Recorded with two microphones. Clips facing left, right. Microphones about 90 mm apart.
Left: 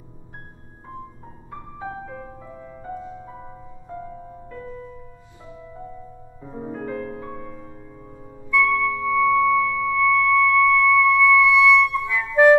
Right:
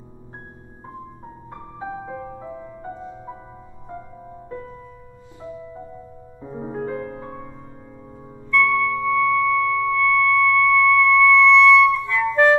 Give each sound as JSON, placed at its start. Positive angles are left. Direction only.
{"t": 1.8, "sound": "music", "side_deg": -15}
{"t": 6.4, "sound": "music", "side_deg": -15}
{"t": 8.5, "sound": "music", "side_deg": 5}